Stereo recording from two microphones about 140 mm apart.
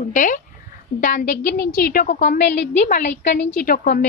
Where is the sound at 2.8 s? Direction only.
65° left (ahead or behind); by 4.0 s 85° left.